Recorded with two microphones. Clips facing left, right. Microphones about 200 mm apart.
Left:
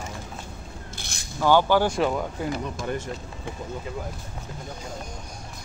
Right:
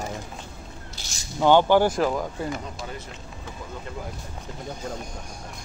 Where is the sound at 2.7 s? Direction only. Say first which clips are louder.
Left 7 dB; 50° left (ahead or behind).